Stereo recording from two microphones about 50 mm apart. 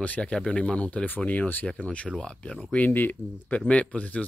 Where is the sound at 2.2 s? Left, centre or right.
Left.